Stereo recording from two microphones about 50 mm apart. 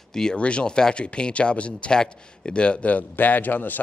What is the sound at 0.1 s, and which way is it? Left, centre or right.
Speech, centre.